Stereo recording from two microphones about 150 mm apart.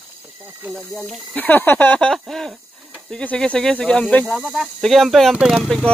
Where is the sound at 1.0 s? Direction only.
5° left (ahead or behind).